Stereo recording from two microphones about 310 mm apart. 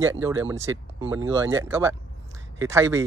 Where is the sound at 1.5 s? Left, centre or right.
Centre.